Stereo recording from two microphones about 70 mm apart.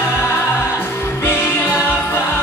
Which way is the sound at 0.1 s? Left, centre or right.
Left.